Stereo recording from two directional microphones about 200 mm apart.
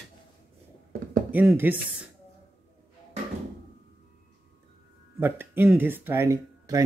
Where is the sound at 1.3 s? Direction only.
10° right (ahead or behind).